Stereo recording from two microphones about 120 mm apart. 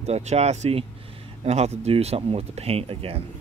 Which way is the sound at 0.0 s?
65° right (ahead or behind).